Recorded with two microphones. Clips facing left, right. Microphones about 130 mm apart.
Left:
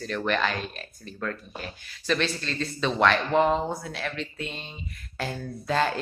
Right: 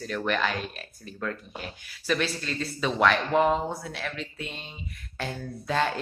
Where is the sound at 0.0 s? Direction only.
5° right (ahead or behind).